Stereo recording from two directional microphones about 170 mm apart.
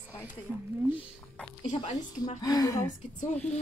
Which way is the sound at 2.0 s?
25° left (ahead or behind).